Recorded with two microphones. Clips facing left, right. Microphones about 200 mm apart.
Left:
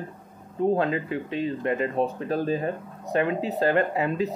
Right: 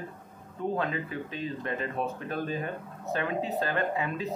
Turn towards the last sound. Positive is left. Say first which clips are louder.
# left 6 dB
turn(degrees=35)  # may be behind; listen again after turning